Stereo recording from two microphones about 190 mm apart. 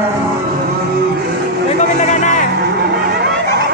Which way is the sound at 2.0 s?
40° left (ahead or behind).